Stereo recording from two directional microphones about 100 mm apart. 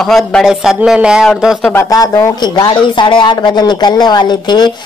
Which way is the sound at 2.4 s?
45° left (ahead or behind).